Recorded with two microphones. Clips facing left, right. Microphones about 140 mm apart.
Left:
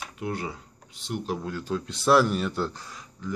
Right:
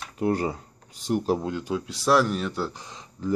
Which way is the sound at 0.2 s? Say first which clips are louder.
Right 8 dB; 40° right (ahead or behind).